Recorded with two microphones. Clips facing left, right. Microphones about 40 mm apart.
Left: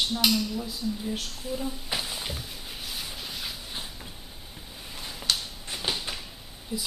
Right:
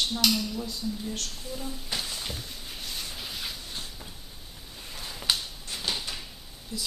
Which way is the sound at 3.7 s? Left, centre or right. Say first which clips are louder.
Left 1 dB; centre.